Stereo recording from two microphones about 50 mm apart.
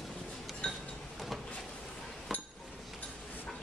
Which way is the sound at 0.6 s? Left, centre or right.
Left.